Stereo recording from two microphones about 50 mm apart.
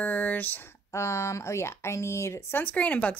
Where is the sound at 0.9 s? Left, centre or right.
Left.